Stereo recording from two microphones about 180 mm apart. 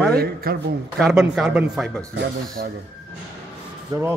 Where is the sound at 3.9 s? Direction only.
25° right (ahead or behind).